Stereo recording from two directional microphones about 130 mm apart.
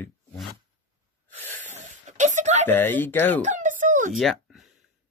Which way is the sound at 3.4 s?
75° right (ahead or behind).